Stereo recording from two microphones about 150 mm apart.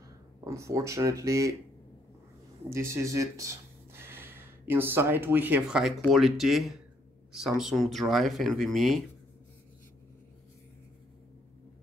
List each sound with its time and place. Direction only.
0.4 s speech: 20° right (ahead or behind)
2.7 s speech: 15° right (ahead or behind); by 9.0 s centre (ahead or behind)